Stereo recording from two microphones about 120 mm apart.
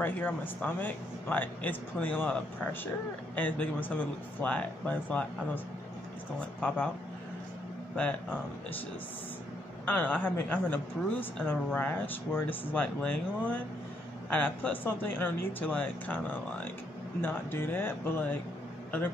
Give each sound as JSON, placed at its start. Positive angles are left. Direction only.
{"t": 0.0, "sound": "a woman's voice", "side_deg": 15}
{"t": 7.9, "sound": "a woman's voice", "side_deg": 15}
{"t": 9.8, "sound": "a woman's voice", "side_deg": 15}